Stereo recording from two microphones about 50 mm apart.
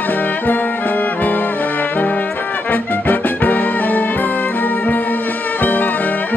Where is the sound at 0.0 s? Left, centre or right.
Left.